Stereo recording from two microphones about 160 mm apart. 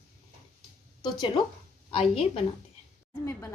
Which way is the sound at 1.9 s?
35° left (ahead or behind).